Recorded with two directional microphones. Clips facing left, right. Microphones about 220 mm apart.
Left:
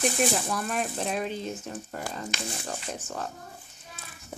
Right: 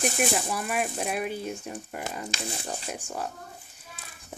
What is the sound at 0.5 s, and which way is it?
Speech, 10° right (ahead or behind).